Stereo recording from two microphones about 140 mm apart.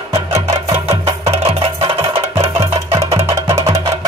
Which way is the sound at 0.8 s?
45° right (ahead or behind).